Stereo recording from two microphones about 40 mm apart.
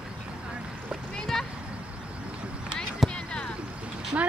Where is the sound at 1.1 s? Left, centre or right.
Centre.